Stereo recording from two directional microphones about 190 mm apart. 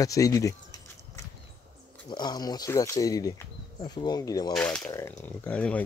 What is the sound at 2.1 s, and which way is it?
Speech, 20° left (ahead or behind).